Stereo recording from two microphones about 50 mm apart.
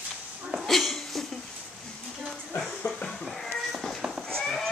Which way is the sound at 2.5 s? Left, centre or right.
Centre.